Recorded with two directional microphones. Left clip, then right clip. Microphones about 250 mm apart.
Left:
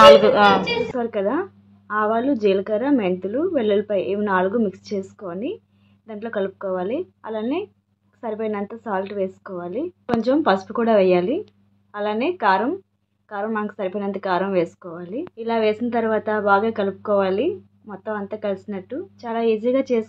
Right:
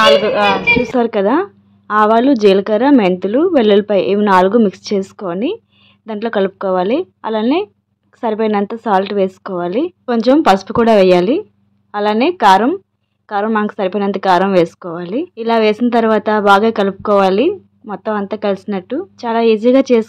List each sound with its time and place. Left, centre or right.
0.0 s a woman's voice: centre
0.9 s a woman's voice: right